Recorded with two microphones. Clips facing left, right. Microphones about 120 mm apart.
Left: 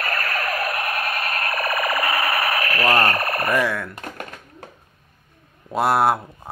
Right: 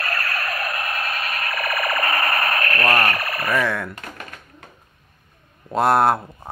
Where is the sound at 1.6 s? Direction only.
25° left (ahead or behind).